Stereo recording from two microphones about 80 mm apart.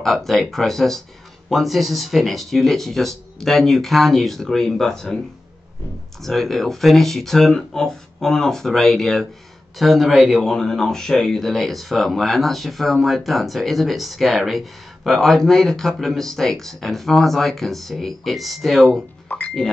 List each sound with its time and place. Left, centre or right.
0.0 s speech: centre
6.2 s speech: centre
19.2 s a sound: left